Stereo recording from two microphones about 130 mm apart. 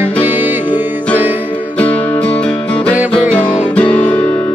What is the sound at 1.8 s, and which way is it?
Music, 10° left (ahead or behind).